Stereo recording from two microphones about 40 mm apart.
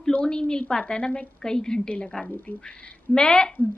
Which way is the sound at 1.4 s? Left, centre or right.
Centre.